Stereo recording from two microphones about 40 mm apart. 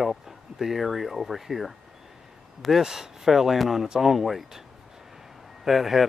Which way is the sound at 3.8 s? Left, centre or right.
Centre.